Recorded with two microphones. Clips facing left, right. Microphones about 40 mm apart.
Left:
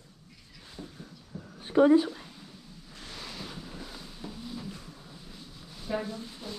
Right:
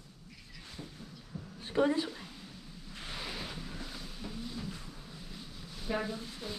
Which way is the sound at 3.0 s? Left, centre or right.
Centre.